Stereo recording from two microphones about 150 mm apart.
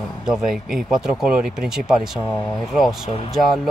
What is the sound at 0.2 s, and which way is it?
Speech, 5° right (ahead or behind).